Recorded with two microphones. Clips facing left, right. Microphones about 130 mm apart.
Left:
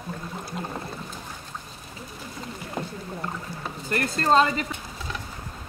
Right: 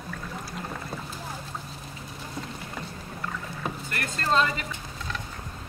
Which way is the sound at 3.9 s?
35° left (ahead or behind).